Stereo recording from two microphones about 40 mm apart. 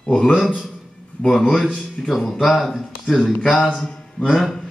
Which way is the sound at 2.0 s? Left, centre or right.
Centre.